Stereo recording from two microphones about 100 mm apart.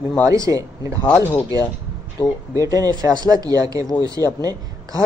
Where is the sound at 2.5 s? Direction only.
35° right (ahead or behind).